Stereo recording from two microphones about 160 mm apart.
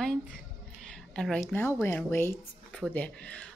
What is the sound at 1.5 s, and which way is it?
Speech, 15° left (ahead or behind).